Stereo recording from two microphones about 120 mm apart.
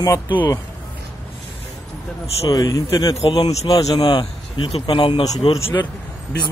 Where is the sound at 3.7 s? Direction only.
40° left (ahead or behind).